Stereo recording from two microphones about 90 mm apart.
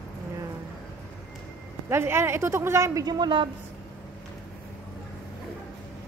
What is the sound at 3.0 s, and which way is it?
Speech, 55° right (ahead or behind).